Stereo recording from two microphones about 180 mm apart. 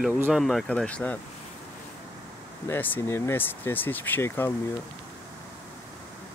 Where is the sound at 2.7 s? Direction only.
10° left (ahead or behind).